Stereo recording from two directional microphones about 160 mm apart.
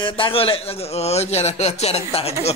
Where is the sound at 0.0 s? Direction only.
35° left (ahead or behind).